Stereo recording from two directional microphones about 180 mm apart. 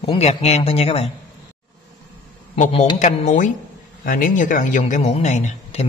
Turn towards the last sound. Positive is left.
turn(degrees=40)  # may be behind; listen again after turning